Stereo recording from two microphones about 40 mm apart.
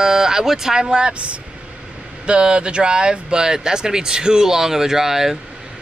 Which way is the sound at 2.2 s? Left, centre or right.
Right.